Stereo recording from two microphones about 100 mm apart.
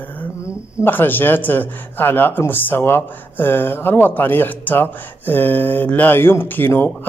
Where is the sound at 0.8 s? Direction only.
20° left (ahead or behind).